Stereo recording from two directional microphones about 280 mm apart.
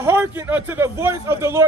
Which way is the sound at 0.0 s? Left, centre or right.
Centre.